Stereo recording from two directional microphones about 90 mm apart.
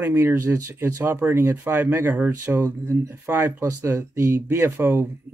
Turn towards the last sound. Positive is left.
turn(degrees=-30)  # may be behind; listen again after turning